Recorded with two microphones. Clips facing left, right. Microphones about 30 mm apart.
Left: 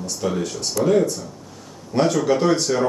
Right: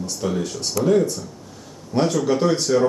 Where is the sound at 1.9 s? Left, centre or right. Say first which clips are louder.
Left 1 dB; centre.